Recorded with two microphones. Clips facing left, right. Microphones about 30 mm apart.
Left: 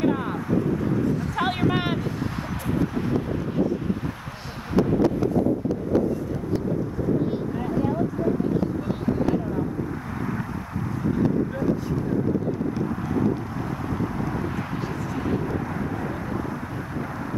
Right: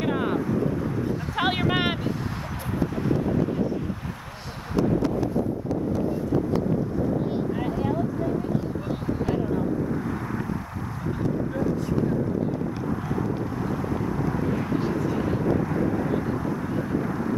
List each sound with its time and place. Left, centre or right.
0.5 s vehicle: centre
1.7 s vehicle: right
2.8 s vehicle: centre
4.7 s a sound: centre
8.5 s a sound: centre
15.2 s vehicle: centre